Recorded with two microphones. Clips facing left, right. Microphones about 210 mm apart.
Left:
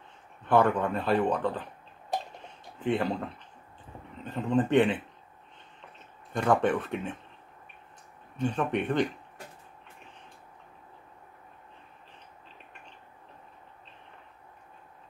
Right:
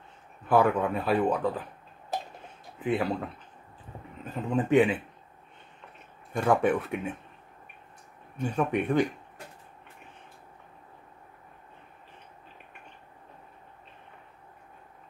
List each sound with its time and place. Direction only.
0.5 s speech: 5° right (ahead or behind)
2.8 s speech: 5° right (ahead or behind)
6.3 s speech: 5° right (ahead or behind)
8.4 s speech: 10° right (ahead or behind)